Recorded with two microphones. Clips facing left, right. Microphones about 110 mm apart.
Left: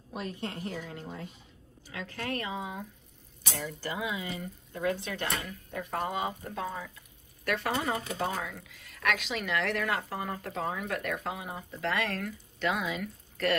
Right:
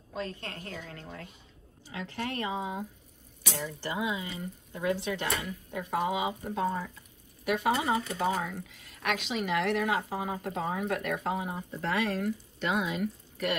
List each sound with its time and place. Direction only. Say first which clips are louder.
0.1 s a woman's voice: left 1 dB; 20° left (ahead or behind)
1.9 s speech: right 1 dB; 25° right (ahead or behind)
3.8 s speech: right 2 dB; 25° right (ahead or behind); by 13.6 s 5° right (ahead or behind)